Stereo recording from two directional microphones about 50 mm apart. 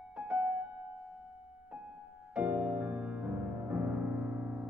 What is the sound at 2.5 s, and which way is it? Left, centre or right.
Music, right.